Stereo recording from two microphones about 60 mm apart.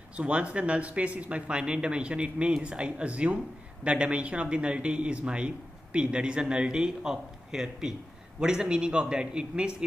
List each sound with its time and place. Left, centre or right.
0.1 s a man's voice: centre